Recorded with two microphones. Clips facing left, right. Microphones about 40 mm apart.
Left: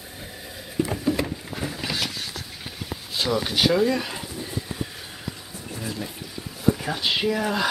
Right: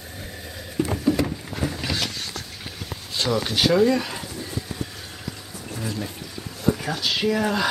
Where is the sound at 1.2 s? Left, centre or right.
Centre.